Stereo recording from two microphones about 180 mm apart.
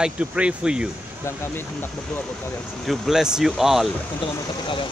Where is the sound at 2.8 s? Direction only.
Centre (ahead or behind).